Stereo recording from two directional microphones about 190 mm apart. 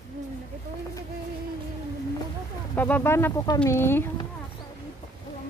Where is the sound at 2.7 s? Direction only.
10° left (ahead or behind).